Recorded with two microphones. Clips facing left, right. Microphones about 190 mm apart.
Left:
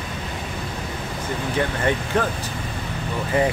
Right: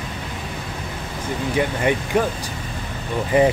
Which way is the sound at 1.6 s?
15° right (ahead or behind).